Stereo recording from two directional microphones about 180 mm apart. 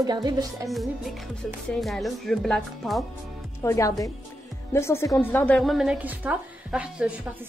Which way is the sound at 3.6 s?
15° left (ahead or behind).